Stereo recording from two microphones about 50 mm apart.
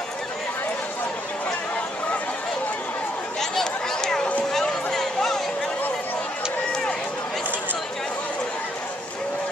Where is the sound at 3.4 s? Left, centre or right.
Centre.